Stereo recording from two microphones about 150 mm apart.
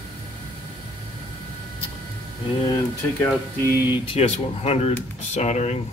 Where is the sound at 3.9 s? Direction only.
40° left (ahead or behind).